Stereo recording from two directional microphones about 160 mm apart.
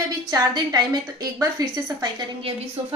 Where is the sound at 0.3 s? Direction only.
25° right (ahead or behind).